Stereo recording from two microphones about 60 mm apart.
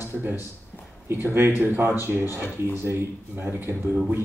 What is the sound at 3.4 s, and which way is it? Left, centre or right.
Speech, right.